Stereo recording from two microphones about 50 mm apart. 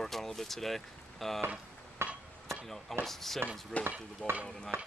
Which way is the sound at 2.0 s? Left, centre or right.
Right.